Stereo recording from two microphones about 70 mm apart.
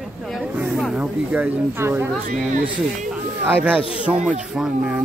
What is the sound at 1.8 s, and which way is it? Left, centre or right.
Speech, right.